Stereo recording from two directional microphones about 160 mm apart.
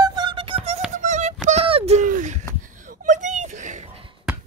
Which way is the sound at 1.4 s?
40° right (ahead or behind).